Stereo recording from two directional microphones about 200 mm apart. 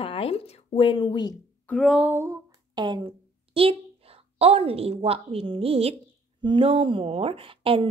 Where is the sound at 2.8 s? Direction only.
20° right (ahead or behind).